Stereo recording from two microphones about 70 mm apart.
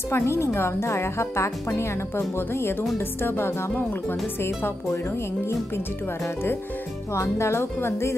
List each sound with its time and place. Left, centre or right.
0.1 s speech: left
7.2 s speech: left